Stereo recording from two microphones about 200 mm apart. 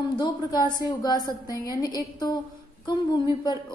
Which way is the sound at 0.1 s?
20° left (ahead or behind).